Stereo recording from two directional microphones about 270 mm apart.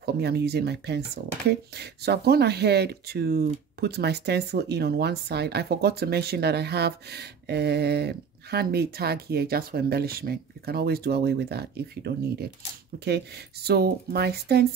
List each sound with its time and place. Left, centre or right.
0.0 s speech: right